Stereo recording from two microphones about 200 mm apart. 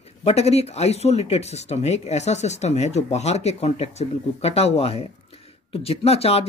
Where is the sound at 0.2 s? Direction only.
30° left (ahead or behind).